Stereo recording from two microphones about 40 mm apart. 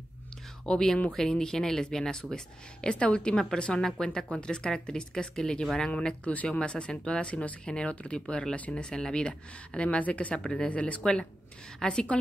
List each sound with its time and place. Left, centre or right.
0.7 s speech: centre
6.2 s speech: left